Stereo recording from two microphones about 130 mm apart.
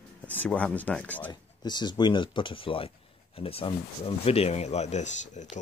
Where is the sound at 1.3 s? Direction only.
35° left (ahead or behind).